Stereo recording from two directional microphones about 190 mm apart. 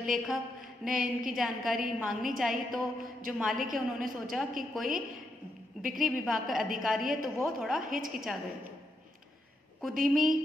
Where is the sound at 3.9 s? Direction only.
50° right (ahead or behind).